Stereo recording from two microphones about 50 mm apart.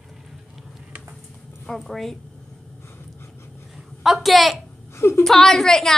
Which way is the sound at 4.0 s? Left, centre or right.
Centre.